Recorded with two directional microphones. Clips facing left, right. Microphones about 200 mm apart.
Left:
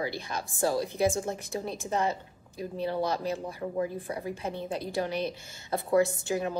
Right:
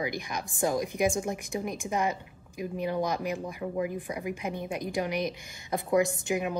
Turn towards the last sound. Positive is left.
turn(degrees=-15)  # may be behind; listen again after turning